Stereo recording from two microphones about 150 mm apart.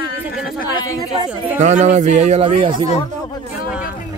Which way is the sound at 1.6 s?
50° right (ahead or behind).